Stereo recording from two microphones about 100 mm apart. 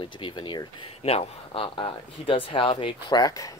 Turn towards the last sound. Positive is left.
turn(degrees=55)  # may be behind; listen again after turning